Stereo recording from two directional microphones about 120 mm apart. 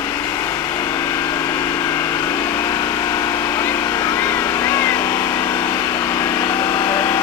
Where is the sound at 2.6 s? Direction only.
35° left (ahead or behind).